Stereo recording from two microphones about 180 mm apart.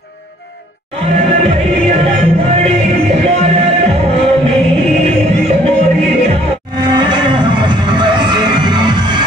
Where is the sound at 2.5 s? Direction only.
35° right (ahead or behind).